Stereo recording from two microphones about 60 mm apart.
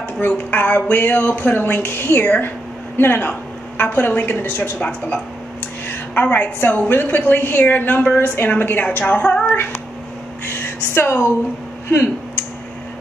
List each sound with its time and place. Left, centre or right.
0.2 s a woman's voice: left
6.2 s a woman's voice: left
10.4 s a sound: left